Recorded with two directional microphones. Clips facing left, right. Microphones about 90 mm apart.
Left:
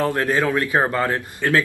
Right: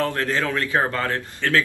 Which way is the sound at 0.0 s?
20° left (ahead or behind).